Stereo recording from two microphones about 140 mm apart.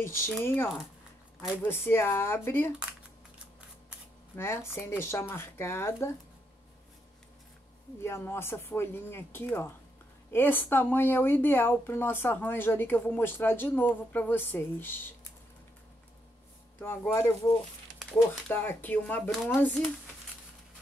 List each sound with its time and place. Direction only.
0.0 s speech: 20° left (ahead or behind)
4.4 s speech: 20° left (ahead or behind)
8.0 s speech: 15° left (ahead or behind)
16.8 s speech: 15° left (ahead or behind)